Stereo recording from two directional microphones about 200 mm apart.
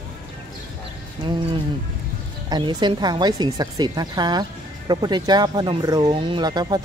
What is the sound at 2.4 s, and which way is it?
Speech, 20° right (ahead or behind).